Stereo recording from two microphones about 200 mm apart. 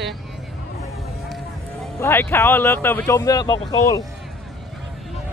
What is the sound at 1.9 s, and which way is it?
Speech, 10° left (ahead or behind).